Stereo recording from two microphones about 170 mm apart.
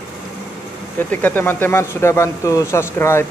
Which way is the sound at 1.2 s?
10° left (ahead or behind).